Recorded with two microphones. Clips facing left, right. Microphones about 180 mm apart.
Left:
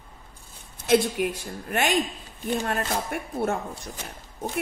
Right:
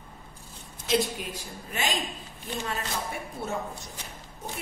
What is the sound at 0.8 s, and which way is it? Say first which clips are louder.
A woman's voice: left 6 dB; 60° left (ahead or behind).